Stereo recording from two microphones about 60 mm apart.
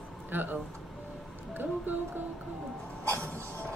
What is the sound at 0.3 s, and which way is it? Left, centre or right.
Speech, right.